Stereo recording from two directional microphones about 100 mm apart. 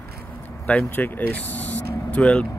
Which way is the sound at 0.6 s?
15° left (ahead or behind).